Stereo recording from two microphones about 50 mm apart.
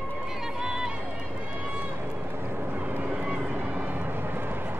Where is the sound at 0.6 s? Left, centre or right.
Centre.